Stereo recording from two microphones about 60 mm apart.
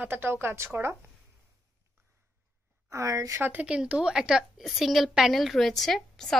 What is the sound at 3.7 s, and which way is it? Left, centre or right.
A woman's voice, centre.